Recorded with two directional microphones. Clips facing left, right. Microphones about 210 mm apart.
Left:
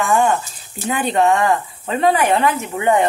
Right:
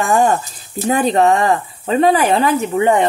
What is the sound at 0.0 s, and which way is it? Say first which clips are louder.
Speech: right 2 dB; 40° right (ahead or behind).